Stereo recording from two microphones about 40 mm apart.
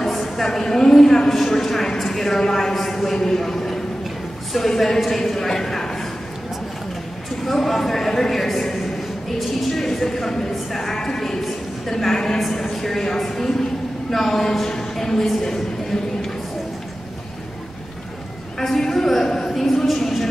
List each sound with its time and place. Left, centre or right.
0.0 s a woman's voice: centre
7.4 s a man's voice: centre
18.6 s a sound: centre